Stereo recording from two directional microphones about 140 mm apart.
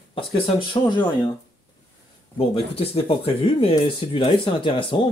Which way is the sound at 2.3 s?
45° left (ahead or behind).